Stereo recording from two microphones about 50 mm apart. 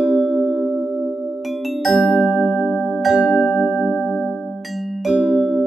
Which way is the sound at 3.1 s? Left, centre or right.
Right.